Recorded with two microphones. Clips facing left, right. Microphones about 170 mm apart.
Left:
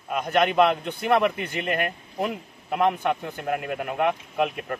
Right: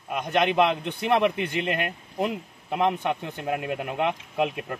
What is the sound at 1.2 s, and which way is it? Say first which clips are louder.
A man's voice: right 1 dB; 20° right (ahead or behind).